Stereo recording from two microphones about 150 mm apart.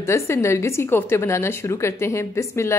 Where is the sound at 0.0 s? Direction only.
20° left (ahead or behind).